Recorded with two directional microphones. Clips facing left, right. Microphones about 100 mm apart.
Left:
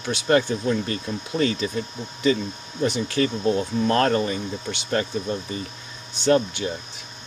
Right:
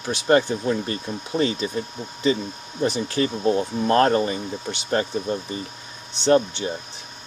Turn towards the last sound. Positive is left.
turn(degrees=-25)  # may be behind; listen again after turning